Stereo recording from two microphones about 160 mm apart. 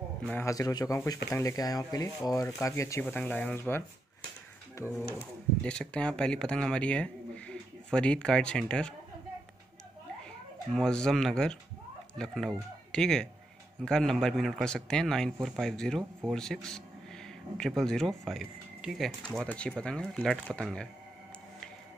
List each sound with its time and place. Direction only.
0.3 s speech: 15° left (ahead or behind)
5.6 s speech: 5° left (ahead or behind)
10.7 s speech: 5° left (ahead or behind)